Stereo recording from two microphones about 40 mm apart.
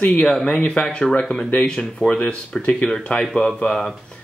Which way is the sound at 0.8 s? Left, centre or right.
Left.